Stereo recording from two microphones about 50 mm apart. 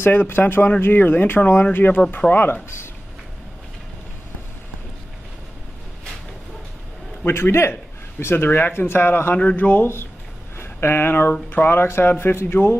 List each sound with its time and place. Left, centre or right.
0.0 s speech: left
2.2 s speech: centre
7.2 s a man's voice: left
8.2 s speech: left
9.3 s speech: left
9.6 s speech: left
10.6 s speech: left